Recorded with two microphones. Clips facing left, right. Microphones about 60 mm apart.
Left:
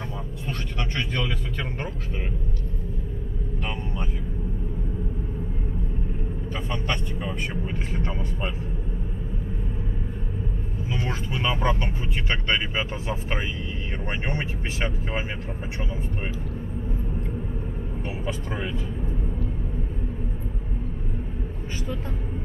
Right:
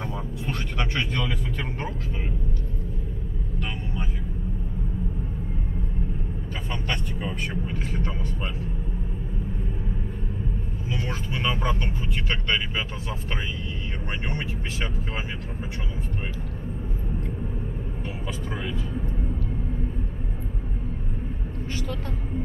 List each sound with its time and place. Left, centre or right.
6.7 s speech: centre
7.6 s speech: centre
10.9 s speech: centre